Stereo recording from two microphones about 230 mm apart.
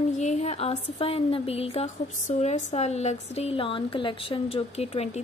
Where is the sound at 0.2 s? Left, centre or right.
Left.